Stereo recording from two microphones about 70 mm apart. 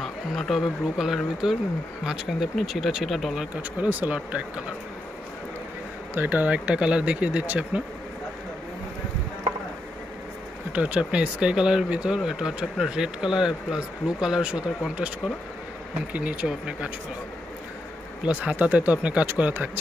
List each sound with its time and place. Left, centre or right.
0.0 s speech: centre
3.8 s speech: right
6.1 s speech: right
10.7 s speech: centre
16.1 s speech: centre
18.2 s speech: centre